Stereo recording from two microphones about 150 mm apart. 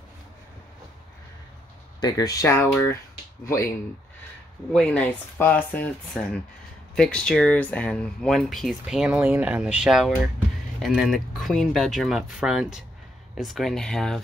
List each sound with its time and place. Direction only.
2.0 s speech: 25° left (ahead or behind)
4.7 s speech: 10° left (ahead or behind)